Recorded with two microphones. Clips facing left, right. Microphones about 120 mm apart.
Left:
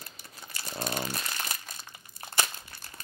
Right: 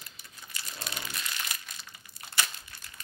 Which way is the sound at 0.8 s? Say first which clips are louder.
Left 8 dB; 45° left (ahead or behind).